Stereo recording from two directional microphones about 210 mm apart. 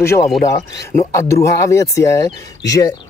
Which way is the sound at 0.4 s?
15° left (ahead or behind).